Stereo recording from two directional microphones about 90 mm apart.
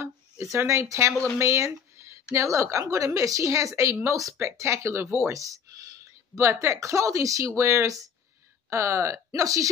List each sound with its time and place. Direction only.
0.0 s speech: 30° right (ahead or behind)